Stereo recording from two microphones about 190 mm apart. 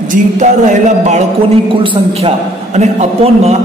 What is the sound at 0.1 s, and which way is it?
A man's voice, 40° right (ahead or behind).